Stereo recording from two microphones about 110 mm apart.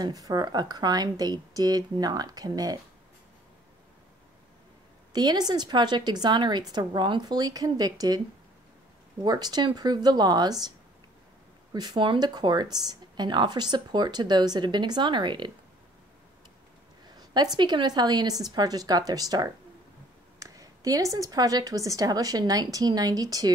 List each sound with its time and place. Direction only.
0.0 s speech: 35° right (ahead or behind)
5.1 s speech: 40° right (ahead or behind)
9.2 s speech: 40° right (ahead or behind)
11.7 s speech: 40° right (ahead or behind)
17.2 s a sound: 40° right (ahead or behind)
17.6 s speech: 40° right (ahead or behind)